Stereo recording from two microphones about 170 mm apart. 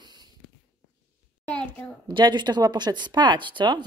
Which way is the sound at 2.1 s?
25° right (ahead or behind).